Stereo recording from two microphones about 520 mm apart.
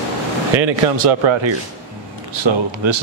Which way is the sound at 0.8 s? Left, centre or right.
Right.